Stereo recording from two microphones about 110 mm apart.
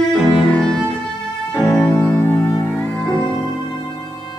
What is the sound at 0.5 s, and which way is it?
Music, 5° left (ahead or behind).